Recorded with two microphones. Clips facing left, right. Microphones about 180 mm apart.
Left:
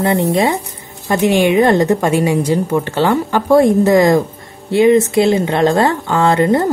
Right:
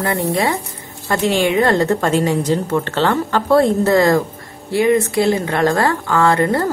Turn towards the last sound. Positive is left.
turn(degrees=20)  # may be behind; listen again after turning